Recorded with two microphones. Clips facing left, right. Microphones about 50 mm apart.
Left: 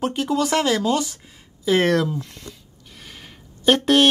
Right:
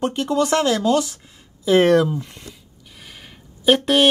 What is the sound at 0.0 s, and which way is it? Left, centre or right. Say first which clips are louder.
Speech: right 2 dB; centre.